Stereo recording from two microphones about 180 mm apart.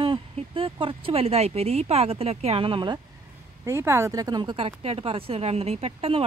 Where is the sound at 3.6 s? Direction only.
15° right (ahead or behind).